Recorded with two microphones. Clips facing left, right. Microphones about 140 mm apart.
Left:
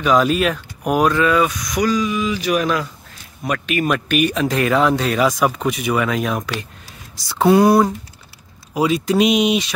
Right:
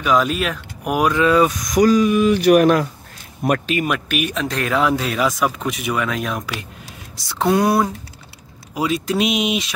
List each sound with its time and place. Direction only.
0.0 s speech: centre (ahead or behind)
1.2 s speech: 30° right (ahead or behind); by 2.9 s 55° right (ahead or behind)
3.4 s speech: 35° right (ahead or behind)
3.8 s speech: 5° right (ahead or behind)